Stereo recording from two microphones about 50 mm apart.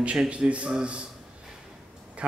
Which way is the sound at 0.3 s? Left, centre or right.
Right.